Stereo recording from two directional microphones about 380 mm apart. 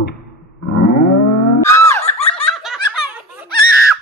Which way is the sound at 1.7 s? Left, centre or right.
Centre.